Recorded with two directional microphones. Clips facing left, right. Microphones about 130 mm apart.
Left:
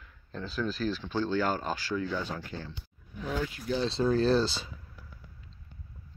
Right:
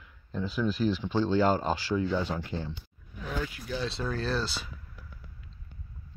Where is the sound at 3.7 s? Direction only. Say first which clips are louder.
Left 7 dB; 30° left (ahead or behind).